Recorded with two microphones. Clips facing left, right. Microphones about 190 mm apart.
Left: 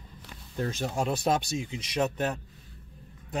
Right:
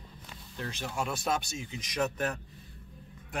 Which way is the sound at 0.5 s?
40° left (ahead or behind).